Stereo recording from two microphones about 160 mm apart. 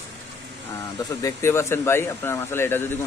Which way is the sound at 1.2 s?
20° left (ahead or behind).